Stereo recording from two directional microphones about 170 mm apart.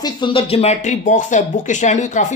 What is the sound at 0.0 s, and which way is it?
Speech, 30° left (ahead or behind).